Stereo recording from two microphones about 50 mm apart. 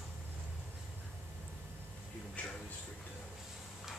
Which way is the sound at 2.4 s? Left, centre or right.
Left.